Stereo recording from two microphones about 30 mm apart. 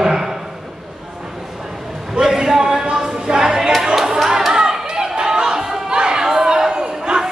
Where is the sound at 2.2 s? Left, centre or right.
Right.